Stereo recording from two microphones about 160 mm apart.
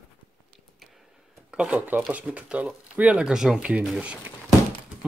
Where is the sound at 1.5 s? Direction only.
10° right (ahead or behind).